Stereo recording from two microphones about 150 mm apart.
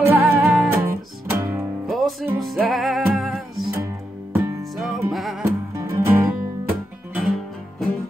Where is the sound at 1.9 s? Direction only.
Centre (ahead or behind).